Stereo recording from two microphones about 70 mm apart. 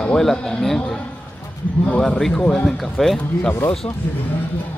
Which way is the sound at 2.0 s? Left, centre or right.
Centre.